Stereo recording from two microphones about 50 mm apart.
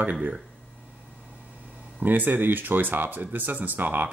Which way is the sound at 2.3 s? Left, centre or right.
Right.